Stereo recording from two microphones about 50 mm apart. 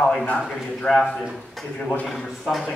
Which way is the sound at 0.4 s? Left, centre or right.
Centre.